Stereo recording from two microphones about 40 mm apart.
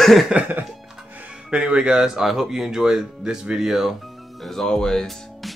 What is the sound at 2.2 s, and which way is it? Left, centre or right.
Speech, centre.